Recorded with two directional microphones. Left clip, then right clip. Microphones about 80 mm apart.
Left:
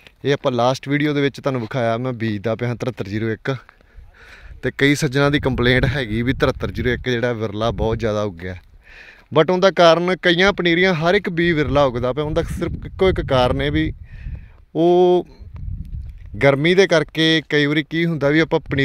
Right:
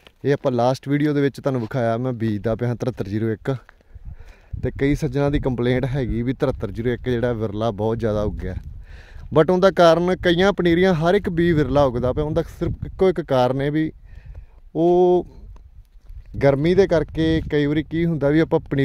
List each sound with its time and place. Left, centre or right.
0.2 s speech: right
4.6 s speech: centre
6.6 s speech: right
7.1 s speech: right
8.9 s speech: right
10.5 s speech: right
12.4 s speech: right
12.8 s speech: right
14.7 s speech: centre
16.6 s speech: right
18.4 s speech: right